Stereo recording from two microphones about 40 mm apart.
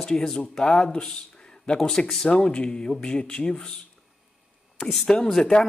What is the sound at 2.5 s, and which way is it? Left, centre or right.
Speech, left.